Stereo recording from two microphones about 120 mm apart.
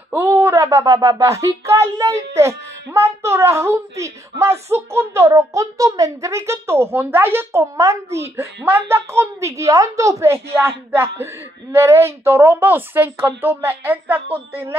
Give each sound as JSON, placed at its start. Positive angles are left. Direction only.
{"t": 0.1, "sound": "a woman's voice", "side_deg": -20}